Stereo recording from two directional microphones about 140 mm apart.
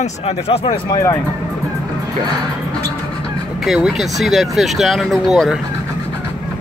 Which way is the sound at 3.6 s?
Centre (ahead or behind).